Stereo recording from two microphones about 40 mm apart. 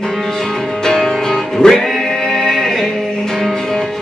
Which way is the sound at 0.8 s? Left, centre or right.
Centre.